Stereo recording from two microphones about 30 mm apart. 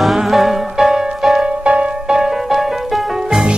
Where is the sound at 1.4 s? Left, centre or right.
Right.